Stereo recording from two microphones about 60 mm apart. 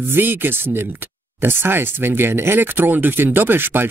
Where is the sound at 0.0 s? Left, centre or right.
Right.